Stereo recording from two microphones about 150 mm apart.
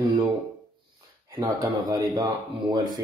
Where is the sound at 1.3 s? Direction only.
25° right (ahead or behind).